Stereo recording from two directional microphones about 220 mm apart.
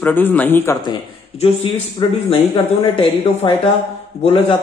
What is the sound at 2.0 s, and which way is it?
Speech, 25° left (ahead or behind).